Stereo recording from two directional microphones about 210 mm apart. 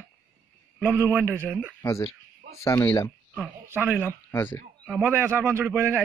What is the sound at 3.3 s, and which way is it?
Speech, 10° right (ahead or behind).